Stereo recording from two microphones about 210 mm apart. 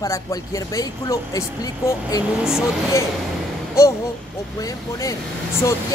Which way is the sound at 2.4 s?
5° right (ahead or behind).